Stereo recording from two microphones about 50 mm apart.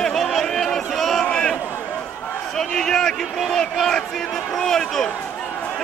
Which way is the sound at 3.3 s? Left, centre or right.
Centre.